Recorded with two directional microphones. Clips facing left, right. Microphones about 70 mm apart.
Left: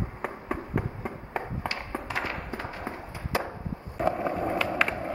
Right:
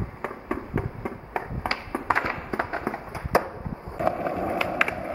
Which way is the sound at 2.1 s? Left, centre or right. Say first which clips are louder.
Right 9 dB; right.